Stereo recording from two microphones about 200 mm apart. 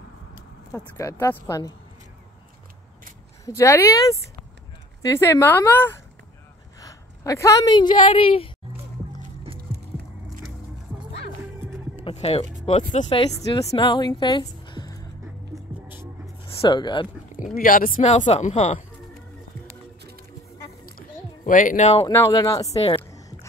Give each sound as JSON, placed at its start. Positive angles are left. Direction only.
{"t": 0.7, "sound": "a woman's voice", "side_deg": 15}
{"t": 3.4, "sound": "a woman's voice", "side_deg": 15}
{"t": 12.0, "sound": "music", "side_deg": 30}
{"t": 12.9, "sound": "a woman's voice", "side_deg": 30}
{"t": 16.5, "sound": "speech", "side_deg": 20}
{"t": 17.4, "sound": "speech", "side_deg": 40}
{"t": 21.5, "sound": "speech", "side_deg": 40}
{"t": 22.0, "sound": "a woman's voice", "side_deg": 15}